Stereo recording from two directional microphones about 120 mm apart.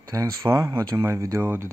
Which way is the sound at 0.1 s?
25° right (ahead or behind).